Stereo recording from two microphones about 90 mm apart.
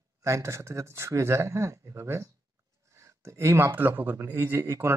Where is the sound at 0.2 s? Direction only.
35° right (ahead or behind).